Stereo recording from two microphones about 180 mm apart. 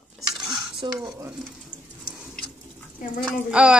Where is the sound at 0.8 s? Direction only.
25° right (ahead or behind).